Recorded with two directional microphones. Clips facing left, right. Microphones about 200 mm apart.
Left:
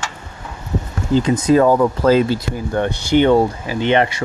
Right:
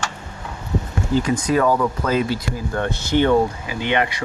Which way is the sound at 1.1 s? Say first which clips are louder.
Left 5 dB; 25° left (ahead or behind).